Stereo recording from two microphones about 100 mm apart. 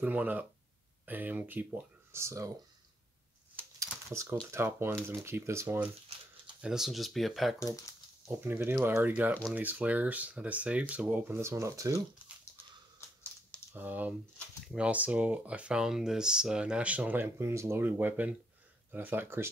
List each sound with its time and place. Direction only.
0.0 s speech: 15° right (ahead or behind)
2.1 s speech: 30° right (ahead or behind)
4.1 s speech: 30° right (ahead or behind)
6.6 s speech: 5° right (ahead or behind)
7.5 s speech: 35° left (ahead or behind)
8.4 s speech: 20° right (ahead or behind)
11.4 s speech: 30° right (ahead or behind)
13.7 s speech: 15° right (ahead or behind)